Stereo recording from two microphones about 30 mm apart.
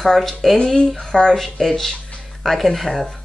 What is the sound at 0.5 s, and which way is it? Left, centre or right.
Speech, left.